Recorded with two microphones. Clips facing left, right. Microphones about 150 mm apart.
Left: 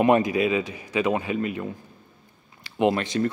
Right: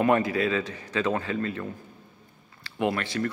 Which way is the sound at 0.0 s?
15° left (ahead or behind).